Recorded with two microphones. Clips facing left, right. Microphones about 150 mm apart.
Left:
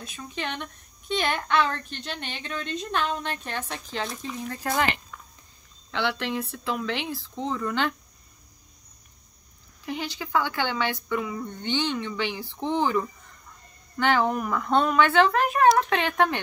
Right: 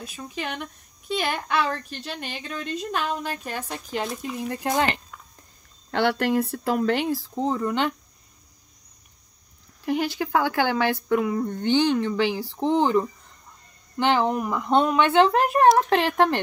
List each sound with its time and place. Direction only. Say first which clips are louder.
0.0 s a woman's voice: right 1 dB; 5° right (ahead or behind)
5.9 s speech: right 6 dB; 50° right (ahead or behind)
7.6 s speech: left 1 dB; 20° right (ahead or behind)
9.8 s speech: right 8 dB; 50° right (ahead or behind)
13.9 s speech: right 2 dB; 20° right (ahead or behind)